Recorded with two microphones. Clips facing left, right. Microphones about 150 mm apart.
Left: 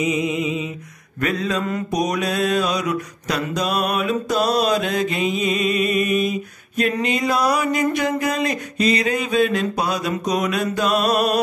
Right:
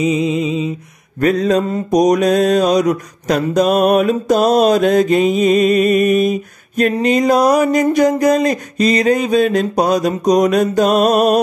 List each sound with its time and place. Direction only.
0.0 s mantra: 30° right (ahead or behind)
1.6 s mantra: 30° right (ahead or behind)
1.9 s mantra: 45° right (ahead or behind)